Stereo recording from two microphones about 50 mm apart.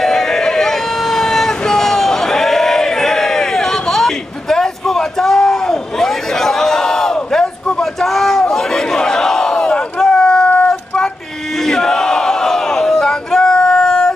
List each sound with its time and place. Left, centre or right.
0.0 s vehicle: centre
9.9 s a sound: centre
11.6 s battle cry: centre